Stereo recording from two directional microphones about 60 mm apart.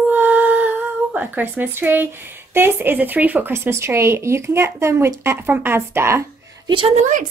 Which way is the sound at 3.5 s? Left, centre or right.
Right.